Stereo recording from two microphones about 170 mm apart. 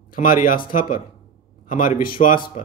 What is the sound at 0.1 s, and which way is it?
A man's voice, 55° left (ahead or behind).